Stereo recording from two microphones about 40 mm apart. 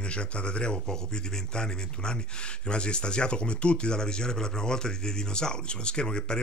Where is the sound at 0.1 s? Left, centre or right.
Left.